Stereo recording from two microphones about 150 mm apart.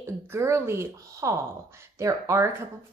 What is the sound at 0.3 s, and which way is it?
A woman's voice, 15° right (ahead or behind).